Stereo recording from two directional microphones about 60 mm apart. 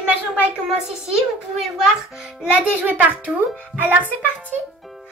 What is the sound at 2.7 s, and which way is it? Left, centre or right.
A child's voice, right.